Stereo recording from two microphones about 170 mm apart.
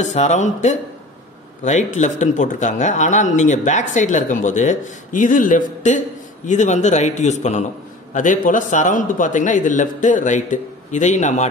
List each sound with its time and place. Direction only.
0.0 s a man's voice: 45° left (ahead or behind)